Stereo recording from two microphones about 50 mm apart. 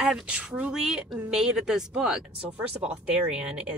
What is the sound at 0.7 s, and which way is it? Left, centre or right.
A woman's voice, centre.